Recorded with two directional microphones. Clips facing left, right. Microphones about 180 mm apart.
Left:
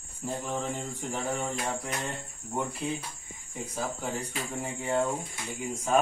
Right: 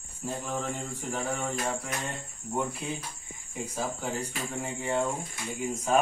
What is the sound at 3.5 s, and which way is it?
Speech, 5° right (ahead or behind).